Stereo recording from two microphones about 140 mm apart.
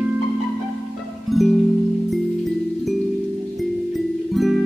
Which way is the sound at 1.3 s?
Centre (ahead or behind).